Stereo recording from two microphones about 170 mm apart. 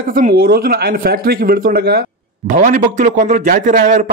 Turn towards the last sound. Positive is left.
turn(degrees=-50)  # may be behind; listen again after turning